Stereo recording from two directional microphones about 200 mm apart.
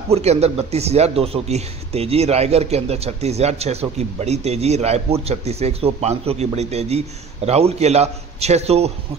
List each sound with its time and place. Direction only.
0.1 s speech: 30° right (ahead or behind)